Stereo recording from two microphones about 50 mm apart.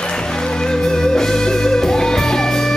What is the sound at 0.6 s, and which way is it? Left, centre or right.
Music, centre.